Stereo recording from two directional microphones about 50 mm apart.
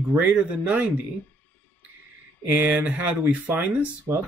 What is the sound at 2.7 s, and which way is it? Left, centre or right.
Speech, right.